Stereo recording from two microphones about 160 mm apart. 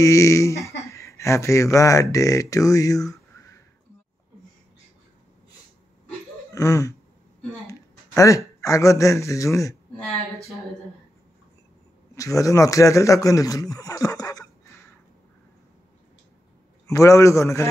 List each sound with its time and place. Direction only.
0.0 s speech: 20° left (ahead or behind)
6.5 s laughter: 20° left (ahead or behind)
7.6 s speech: 20° left (ahead or behind)
12.2 s speech: 20° left (ahead or behind)
16.8 s speech: 20° left (ahead or behind)